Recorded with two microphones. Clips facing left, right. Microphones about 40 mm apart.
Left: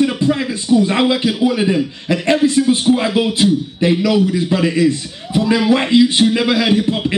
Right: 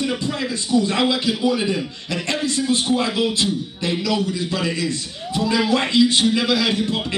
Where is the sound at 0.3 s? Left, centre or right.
Centre.